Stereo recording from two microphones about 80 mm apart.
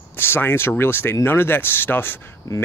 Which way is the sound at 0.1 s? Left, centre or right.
Left.